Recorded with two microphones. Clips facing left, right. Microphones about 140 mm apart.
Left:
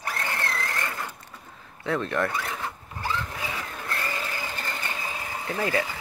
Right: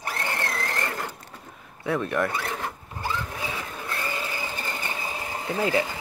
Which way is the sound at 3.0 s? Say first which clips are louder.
Even; 15° right (ahead or behind).